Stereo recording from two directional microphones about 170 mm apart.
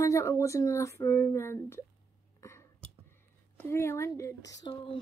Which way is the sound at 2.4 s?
15° left (ahead or behind).